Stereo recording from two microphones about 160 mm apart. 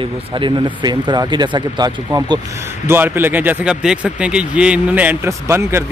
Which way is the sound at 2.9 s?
15° right (ahead or behind).